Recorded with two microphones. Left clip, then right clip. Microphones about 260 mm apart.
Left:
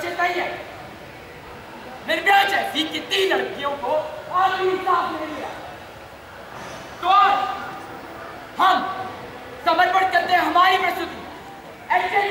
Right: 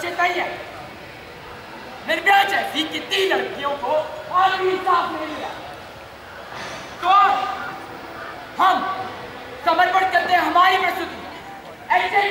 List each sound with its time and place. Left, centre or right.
0.0 s a sound: centre
2.0 s a man's voice: centre
3.8 s a man's voice: right
4.4 s a man's voice: centre
7.1 s a man's voice: centre
8.5 s a man's voice: centre
11.9 s a man's voice: centre